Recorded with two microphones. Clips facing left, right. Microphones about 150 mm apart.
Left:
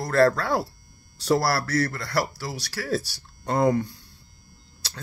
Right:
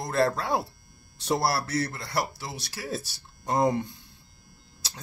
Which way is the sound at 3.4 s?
15° right (ahead or behind).